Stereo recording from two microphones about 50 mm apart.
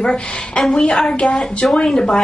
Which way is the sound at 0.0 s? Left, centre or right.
Centre.